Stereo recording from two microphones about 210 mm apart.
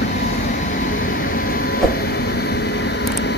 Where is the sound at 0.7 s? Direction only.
40° left (ahead or behind).